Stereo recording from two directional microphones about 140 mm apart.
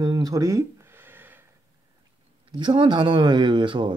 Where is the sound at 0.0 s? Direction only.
25° right (ahead or behind).